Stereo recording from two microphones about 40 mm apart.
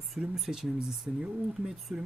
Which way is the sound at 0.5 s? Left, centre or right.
Centre.